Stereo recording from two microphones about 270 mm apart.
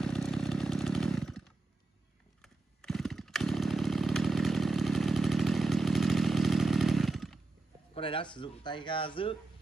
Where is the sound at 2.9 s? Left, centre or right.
Centre.